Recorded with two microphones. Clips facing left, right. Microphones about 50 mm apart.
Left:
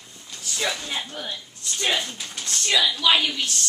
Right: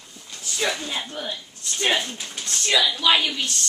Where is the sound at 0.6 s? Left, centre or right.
Centre.